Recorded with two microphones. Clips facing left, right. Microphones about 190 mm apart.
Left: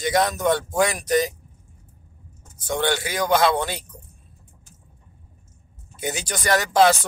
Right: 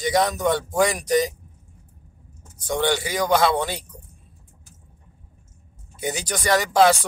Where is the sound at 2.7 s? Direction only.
15° right (ahead or behind).